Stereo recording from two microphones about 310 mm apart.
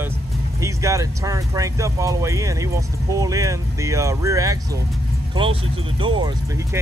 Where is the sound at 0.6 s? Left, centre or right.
Centre.